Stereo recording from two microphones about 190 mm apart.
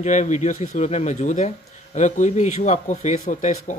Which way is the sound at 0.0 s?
40° left (ahead or behind).